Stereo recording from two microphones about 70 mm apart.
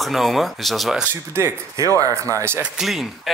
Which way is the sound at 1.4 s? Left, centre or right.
Right.